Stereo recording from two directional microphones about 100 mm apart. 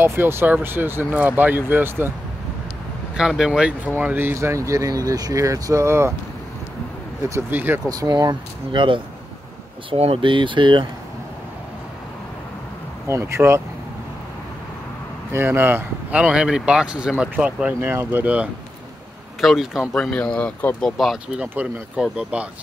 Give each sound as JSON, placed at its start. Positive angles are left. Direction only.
{"t": 0.0, "sound": "speech", "side_deg": -25}
{"t": 3.2, "sound": "speech", "side_deg": -5}
{"t": 3.9, "sound": "speech", "side_deg": -20}
{"t": 7.5, "sound": "speech", "side_deg": -20}
{"t": 8.1, "sound": "speech", "side_deg": -50}
{"t": 9.8, "sound": "speech", "side_deg": -80}
{"t": 10.2, "sound": "speech", "side_deg": -55}
{"t": 13.0, "sound": "speech", "side_deg": -30}
{"t": 15.3, "sound": "speech", "side_deg": -20}
{"t": 16.2, "sound": "speech", "side_deg": -10}
{"t": 17.7, "sound": "speech", "side_deg": -25}
{"t": 19.4, "sound": "speech", "side_deg": 0}
{"t": 19.9, "sound": "speech", "side_deg": 5}
{"t": 20.8, "sound": "speech", "side_deg": 0}